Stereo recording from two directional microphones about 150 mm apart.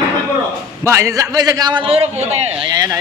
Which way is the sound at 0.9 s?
20° right (ahead or behind).